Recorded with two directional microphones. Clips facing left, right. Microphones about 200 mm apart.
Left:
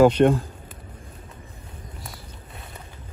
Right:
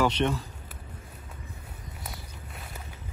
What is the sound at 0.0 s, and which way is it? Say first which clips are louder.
Speech: left 10 dB; 45° left (ahead or behind).